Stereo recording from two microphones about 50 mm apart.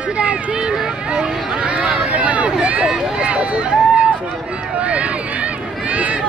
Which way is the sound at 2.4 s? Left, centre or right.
Right.